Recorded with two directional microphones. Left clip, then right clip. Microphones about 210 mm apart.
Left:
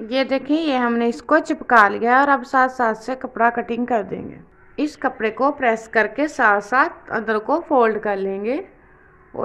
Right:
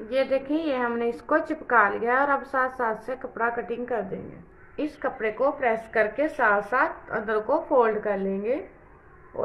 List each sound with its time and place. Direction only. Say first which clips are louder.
0.0 s a woman's voice: left 4 dB; 50° left (ahead or behind)